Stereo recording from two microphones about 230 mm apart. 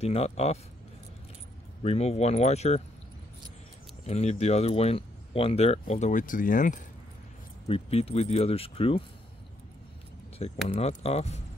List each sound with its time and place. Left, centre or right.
0.0 s speech: left
1.8 s speech: left
4.0 s speech: left
10.7 s speech: left